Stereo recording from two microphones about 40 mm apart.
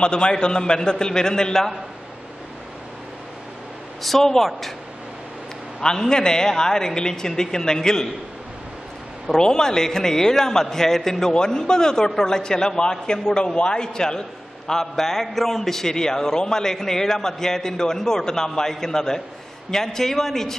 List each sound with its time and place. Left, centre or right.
0.0 s a man's voice: left
4.0 s a man's voice: centre
5.8 s a man's voice: centre
9.3 s a man's voice: centre